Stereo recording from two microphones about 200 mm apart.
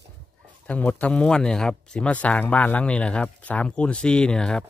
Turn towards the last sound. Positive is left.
turn(degrees=5)  # may be behind; listen again after turning